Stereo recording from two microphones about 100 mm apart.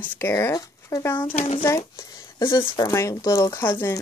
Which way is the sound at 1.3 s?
90° left.